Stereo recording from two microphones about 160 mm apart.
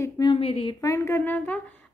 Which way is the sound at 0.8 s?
20° left (ahead or behind).